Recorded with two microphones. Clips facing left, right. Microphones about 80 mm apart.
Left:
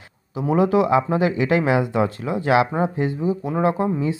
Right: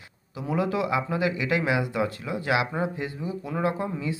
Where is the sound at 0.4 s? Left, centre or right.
Left.